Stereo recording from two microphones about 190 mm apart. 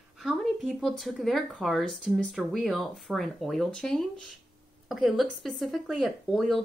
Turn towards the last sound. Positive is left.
turn(degrees=0)  # may be behind; listen again after turning